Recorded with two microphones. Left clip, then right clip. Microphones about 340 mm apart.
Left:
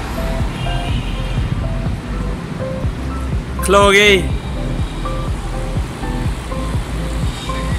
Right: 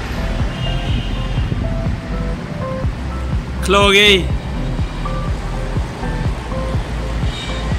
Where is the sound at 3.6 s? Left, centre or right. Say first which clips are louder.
Left 1 dB; centre.